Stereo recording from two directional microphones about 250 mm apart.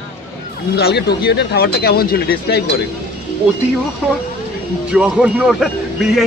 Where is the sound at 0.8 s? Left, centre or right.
Left.